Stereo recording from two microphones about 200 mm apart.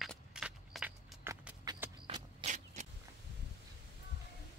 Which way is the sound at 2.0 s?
30° right (ahead or behind).